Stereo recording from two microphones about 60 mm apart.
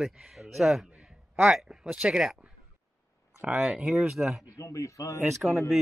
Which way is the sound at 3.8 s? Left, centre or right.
Centre.